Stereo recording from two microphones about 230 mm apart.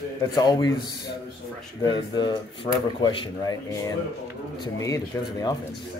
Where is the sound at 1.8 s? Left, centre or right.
Centre.